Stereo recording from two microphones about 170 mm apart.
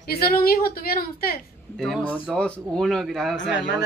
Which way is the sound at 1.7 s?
5° left (ahead or behind).